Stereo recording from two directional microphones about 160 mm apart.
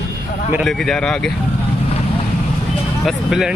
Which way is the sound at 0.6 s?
5° left (ahead or behind).